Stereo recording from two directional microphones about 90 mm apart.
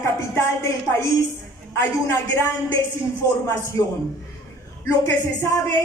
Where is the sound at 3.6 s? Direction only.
30° left (ahead or behind).